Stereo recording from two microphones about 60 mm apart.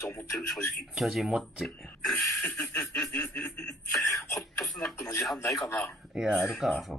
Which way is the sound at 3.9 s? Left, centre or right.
Left.